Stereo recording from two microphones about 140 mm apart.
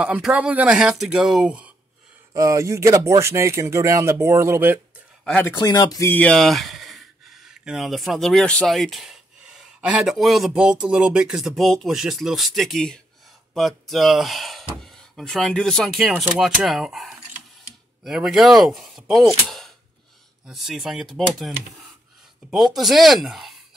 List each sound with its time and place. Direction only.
0.0 s speech: 10° right (ahead or behind)
2.3 s speech: 25° right (ahead or behind)
5.2 s speech: 15° left (ahead or behind)
5.6 s speech: 30° left (ahead or behind)
6.0 s speech: 10° left (ahead or behind)
22.8 s speech: centre (ahead or behind)